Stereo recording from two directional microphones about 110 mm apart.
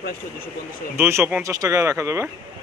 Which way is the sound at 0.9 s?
25° right (ahead or behind).